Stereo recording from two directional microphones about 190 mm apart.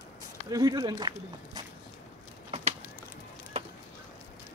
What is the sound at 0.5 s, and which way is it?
Speech, 20° right (ahead or behind).